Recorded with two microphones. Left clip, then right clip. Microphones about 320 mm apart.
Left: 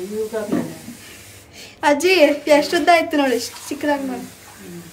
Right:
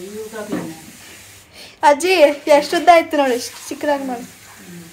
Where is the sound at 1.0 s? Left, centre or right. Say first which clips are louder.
Even; centre.